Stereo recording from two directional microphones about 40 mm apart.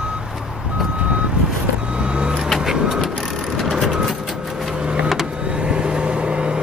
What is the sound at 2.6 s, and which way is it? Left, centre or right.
Vehicle, centre.